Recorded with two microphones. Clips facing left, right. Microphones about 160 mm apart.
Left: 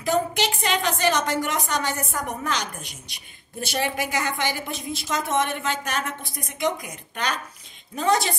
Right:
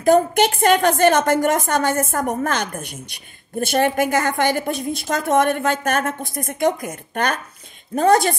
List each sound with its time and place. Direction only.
0.0 s a woman's voice: 50° right (ahead or behind)